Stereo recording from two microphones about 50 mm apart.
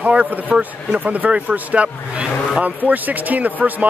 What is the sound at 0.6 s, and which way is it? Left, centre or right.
Speech, right.